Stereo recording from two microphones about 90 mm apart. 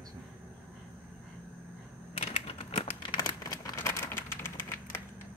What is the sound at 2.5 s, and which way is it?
Typing, 90° left.